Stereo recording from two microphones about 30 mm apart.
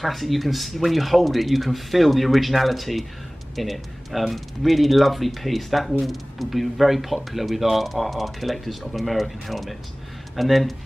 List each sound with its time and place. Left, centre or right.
0.0 s speech: centre